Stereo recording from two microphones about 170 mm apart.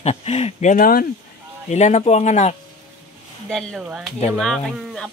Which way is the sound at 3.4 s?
Centre (ahead or behind).